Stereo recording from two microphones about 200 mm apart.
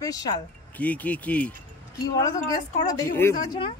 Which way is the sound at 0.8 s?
5° left (ahead or behind).